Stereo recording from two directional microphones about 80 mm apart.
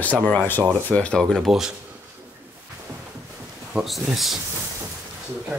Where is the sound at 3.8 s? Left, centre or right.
Centre.